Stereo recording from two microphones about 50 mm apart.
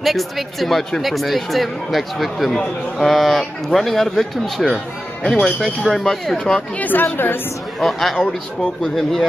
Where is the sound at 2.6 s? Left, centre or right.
Centre.